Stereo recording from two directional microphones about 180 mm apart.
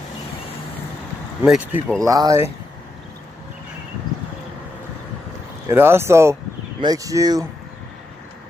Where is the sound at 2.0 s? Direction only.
20° right (ahead or behind).